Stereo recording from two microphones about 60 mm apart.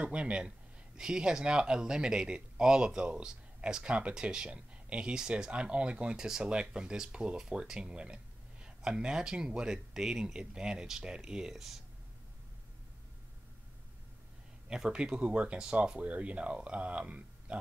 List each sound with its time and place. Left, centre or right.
0.0 s speech: centre
14.7 s speech: centre